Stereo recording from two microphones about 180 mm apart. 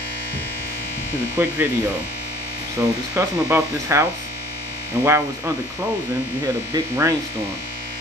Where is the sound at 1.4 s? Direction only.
15° right (ahead or behind).